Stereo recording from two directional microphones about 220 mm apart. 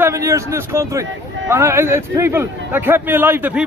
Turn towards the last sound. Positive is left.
turn(degrees=-10)  # may be behind; listen again after turning